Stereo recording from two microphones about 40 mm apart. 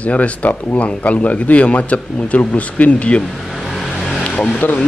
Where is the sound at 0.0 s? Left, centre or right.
Left.